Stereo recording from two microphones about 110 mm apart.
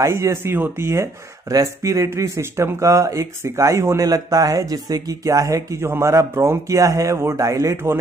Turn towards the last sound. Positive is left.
turn(degrees=-30)  # may be behind; listen again after turning